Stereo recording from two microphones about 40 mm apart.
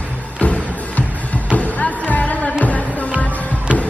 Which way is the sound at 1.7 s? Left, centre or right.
Left.